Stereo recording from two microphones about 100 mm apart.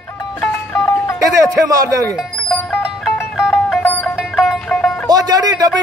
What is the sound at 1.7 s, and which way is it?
Speech, 35° right (ahead or behind).